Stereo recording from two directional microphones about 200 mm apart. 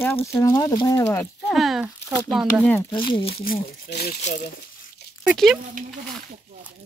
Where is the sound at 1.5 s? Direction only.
Centre (ahead or behind).